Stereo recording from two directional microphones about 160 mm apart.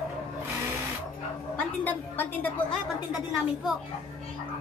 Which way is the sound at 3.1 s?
Centre (ahead or behind).